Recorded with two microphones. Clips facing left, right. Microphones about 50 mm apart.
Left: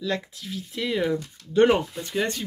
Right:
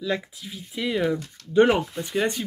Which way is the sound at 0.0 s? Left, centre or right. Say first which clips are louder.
Right 1 dB; centre.